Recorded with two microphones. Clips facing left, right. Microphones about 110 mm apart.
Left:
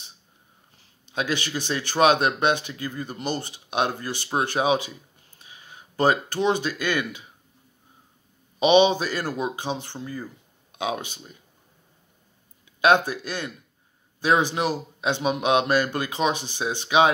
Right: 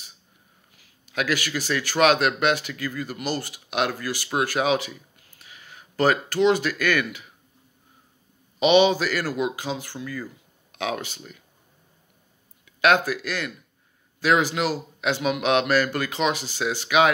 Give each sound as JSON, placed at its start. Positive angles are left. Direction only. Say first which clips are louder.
{"t": 0.7, "sound": "speech", "louder": "right 1 dB", "side_deg": 25}
{"t": 8.5, "sound": "a man's voice", "louder": "even", "side_deg": 20}
{"t": 12.8, "sound": "a man's voice", "louder": "left 1 dB", "side_deg": 20}